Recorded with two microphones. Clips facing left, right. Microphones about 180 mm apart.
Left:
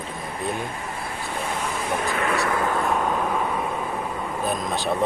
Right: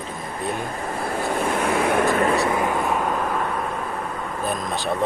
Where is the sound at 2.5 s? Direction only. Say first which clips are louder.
Right 2 dB; 15° right (ahead or behind).